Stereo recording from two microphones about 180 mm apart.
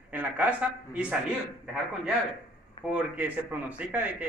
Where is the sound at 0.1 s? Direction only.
10° right (ahead or behind).